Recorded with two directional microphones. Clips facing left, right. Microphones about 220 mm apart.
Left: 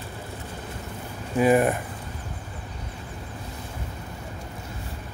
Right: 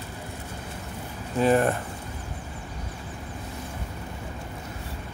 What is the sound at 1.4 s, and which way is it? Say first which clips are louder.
Speech: left 2 dB; 10° left (ahead or behind).